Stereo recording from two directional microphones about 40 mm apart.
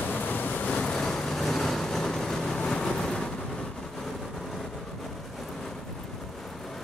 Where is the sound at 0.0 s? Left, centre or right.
Left.